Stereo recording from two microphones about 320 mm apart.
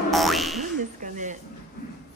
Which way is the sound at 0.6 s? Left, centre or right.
Right.